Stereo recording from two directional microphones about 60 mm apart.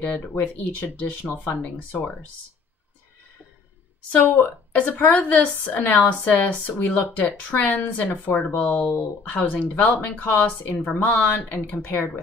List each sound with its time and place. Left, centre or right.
0.3 s a woman's voice: left
4.2 s a woman's voice: left